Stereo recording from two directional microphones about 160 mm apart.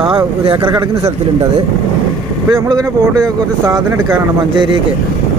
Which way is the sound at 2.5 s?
25° right (ahead or behind).